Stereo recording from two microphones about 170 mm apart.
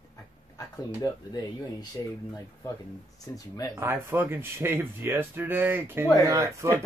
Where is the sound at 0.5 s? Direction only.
20° left (ahead or behind).